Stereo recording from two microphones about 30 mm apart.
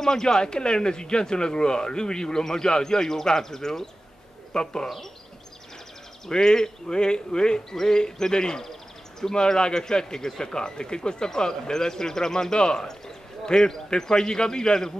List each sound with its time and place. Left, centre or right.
0.0 s a man's voice: centre
6.3 s a man's voice: left